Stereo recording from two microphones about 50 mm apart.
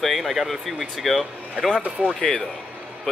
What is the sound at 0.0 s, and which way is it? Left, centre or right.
Speech, centre.